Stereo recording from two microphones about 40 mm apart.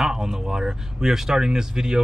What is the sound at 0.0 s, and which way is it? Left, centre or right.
Speech, centre.